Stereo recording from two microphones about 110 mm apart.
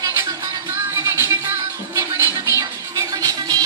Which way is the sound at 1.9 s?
30° right (ahead or behind).